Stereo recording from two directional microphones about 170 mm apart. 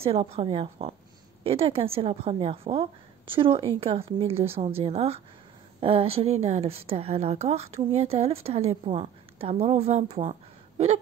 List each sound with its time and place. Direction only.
0.0 s a woman's voice: 35° right (ahead or behind)